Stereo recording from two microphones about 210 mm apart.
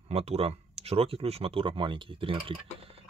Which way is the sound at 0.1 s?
30° right (ahead or behind).